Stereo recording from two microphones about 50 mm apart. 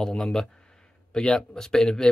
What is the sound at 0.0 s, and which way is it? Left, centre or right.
Speech, centre.